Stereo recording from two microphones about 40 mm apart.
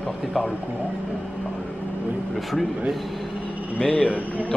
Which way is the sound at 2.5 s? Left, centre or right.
Centre.